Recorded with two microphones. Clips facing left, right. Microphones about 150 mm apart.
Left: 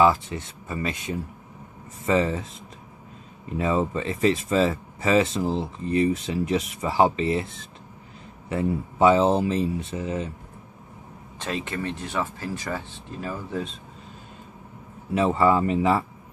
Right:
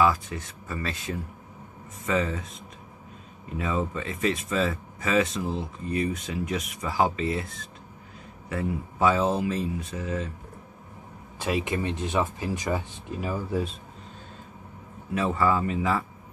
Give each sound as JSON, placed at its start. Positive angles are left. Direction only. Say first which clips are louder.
{"t": 0.0, "sound": "speech", "louder": "left 4 dB", "side_deg": 25}
{"t": 2.0, "sound": "speech", "louder": "left 4 dB", "side_deg": 30}
{"t": 3.5, "sound": "speech", "louder": "left 5 dB", "side_deg": 30}
{"t": 11.3, "sound": "speech", "louder": "right 3 dB", "side_deg": -10}
{"t": 15.1, "sound": "speech", "louder": "left 4 dB", "side_deg": 25}